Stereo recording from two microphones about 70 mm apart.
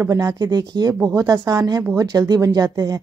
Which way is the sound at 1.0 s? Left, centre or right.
Right.